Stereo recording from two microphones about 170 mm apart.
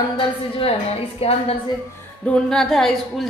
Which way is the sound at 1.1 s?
35° left (ahead or behind).